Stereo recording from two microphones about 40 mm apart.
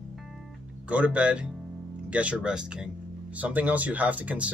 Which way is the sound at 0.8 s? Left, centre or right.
Right.